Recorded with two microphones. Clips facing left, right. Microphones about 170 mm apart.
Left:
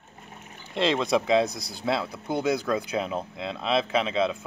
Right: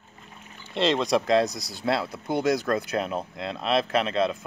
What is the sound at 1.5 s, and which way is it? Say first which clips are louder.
Speech: right 1 dB; 55° left (ahead or behind).